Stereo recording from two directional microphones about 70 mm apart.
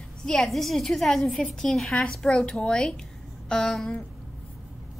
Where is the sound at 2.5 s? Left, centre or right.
Centre.